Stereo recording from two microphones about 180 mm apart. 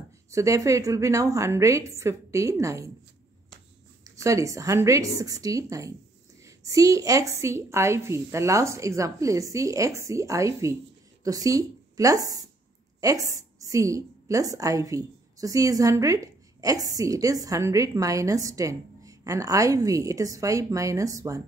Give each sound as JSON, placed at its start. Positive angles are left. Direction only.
{"t": 0.3, "sound": "a woman's voice", "side_deg": -15}
{"t": 4.0, "sound": "a woman's voice", "side_deg": -15}